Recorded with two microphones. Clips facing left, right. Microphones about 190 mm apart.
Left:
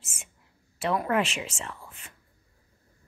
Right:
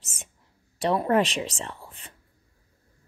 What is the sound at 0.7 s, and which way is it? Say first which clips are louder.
Speech: right 4 dB; 30° right (ahead or behind).